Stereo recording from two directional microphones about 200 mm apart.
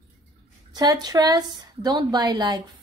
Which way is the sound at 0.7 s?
20° right (ahead or behind).